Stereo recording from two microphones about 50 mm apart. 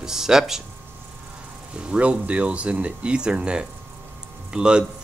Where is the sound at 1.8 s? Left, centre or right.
Right.